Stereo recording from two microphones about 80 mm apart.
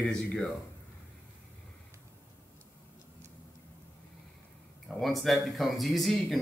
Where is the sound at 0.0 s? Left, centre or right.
Centre.